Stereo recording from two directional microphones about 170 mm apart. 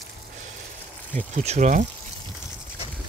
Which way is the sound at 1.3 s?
45° right (ahead or behind).